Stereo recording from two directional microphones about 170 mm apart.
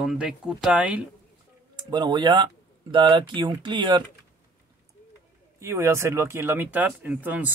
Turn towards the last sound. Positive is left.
turn(degrees=-10)  # may be behind; listen again after turning